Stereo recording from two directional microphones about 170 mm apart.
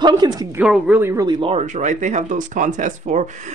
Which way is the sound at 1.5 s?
45° right (ahead or behind).